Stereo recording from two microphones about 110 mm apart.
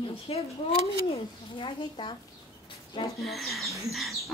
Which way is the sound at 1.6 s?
50° left (ahead or behind).